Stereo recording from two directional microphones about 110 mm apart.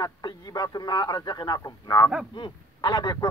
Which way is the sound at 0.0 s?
35° left (ahead or behind).